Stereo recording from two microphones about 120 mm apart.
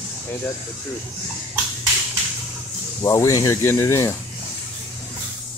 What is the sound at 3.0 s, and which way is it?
Speech, 25° left (ahead or behind).